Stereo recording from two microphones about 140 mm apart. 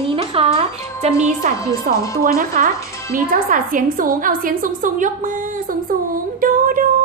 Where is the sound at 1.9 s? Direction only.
90° right.